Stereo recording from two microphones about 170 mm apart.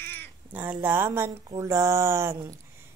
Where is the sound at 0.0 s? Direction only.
10° left (ahead or behind).